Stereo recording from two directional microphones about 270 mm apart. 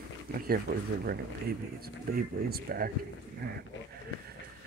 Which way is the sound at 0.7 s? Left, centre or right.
Right.